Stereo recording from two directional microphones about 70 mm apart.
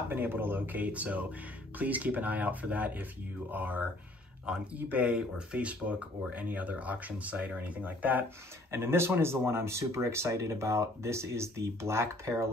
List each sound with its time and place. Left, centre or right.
0.1 s speech: right
8.7 s speech: right